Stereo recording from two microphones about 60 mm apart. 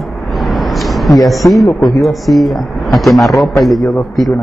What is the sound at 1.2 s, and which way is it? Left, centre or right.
Speech, centre.